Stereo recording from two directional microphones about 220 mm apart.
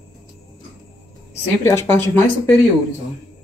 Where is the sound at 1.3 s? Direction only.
10° left (ahead or behind).